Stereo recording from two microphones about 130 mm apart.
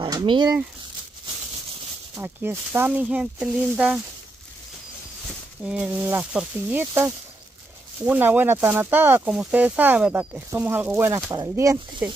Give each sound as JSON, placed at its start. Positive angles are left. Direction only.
{"t": 0.0, "sound": "speech", "side_deg": -35}
{"t": 2.1, "sound": "speech", "side_deg": -20}
{"t": 5.6, "sound": "speech", "side_deg": -5}
{"t": 5.9, "sound": "speech", "side_deg": -15}
{"t": 8.0, "sound": "speech", "side_deg": -15}